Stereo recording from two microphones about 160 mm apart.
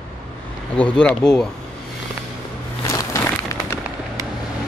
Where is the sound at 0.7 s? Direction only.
5° left (ahead or behind).